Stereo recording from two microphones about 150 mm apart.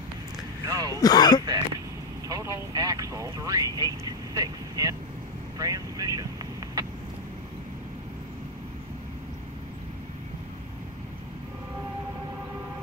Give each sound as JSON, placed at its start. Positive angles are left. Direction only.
{"t": 0.7, "sound": "speech", "side_deg": -25}
{"t": 1.0, "sound": "speech", "side_deg": 25}
{"t": 1.4, "sound": "speech", "side_deg": -25}